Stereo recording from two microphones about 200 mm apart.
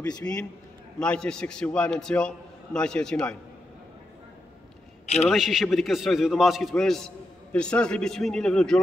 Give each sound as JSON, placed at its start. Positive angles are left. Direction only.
{"t": 0.2, "sound": "a man's voice", "side_deg": 20}
{"t": 0.9, "sound": "a man's voice", "side_deg": 5}
{"t": 5.0, "sound": "a man's voice", "side_deg": 30}
{"t": 5.3, "sound": "a man's voice", "side_deg": 0}